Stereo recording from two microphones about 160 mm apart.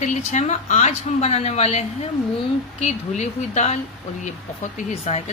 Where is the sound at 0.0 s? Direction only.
50° left (ahead or behind).